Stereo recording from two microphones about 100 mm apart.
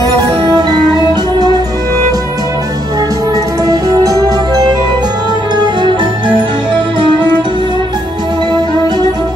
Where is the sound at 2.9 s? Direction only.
35° right (ahead or behind); by 7.1 s 55° right (ahead or behind).